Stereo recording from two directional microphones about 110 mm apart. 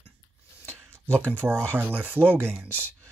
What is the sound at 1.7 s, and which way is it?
Speech, 20° right (ahead or behind).